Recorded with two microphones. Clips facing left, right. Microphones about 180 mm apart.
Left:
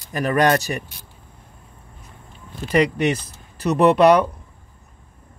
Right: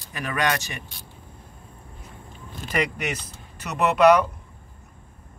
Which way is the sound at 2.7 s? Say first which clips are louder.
Left 8 dB; 30° left (ahead or behind).